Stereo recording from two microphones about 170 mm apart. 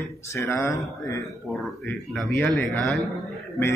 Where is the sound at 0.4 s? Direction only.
15° left (ahead or behind).